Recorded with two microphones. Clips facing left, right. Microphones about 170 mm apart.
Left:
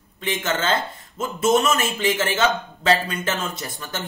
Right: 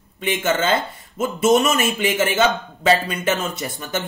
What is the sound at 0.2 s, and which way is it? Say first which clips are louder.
A man's voice: right 4 dB; 10° right (ahead or behind).